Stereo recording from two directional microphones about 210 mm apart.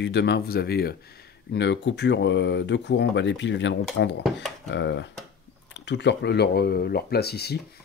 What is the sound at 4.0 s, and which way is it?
Speech, 70° left (ahead or behind).